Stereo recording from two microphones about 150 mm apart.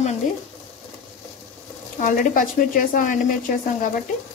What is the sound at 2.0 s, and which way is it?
Speech, 65° left (ahead or behind).